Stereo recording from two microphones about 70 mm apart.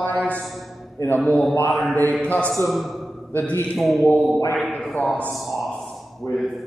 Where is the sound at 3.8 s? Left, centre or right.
Centre.